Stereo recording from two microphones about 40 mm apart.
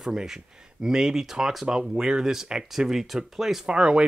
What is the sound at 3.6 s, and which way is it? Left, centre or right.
Speech, right.